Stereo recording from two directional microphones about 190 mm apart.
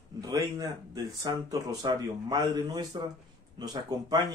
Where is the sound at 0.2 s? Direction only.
20° right (ahead or behind).